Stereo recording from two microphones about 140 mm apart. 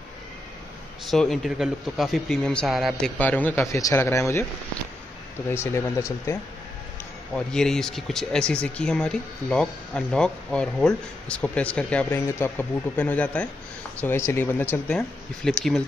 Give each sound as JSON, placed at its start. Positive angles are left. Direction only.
{"t": 1.0, "sound": "speech", "side_deg": 5}
{"t": 3.2, "sound": "speech", "side_deg": 10}
{"t": 5.5, "sound": "speech", "side_deg": 20}
{"t": 7.3, "sound": "speech", "side_deg": 5}